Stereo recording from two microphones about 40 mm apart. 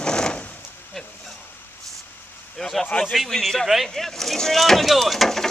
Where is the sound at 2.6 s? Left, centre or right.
Centre.